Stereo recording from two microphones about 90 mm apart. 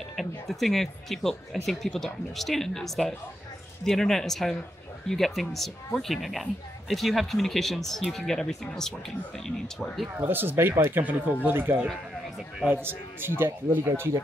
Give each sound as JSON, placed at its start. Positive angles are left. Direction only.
{"t": 0.1, "sound": "speech", "side_deg": 0}
{"t": 10.1, "sound": "a man's voice", "side_deg": -25}